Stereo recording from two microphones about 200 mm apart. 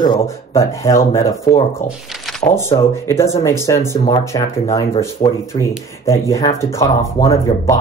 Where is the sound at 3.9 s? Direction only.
25° left (ahead or behind).